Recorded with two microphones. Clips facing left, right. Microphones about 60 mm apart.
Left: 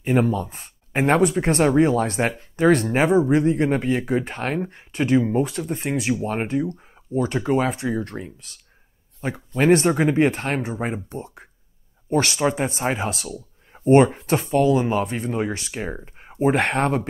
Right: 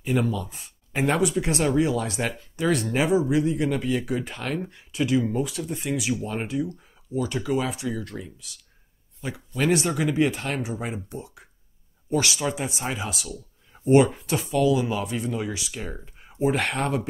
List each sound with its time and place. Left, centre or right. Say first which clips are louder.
0.0 s speech: left 5 dB; left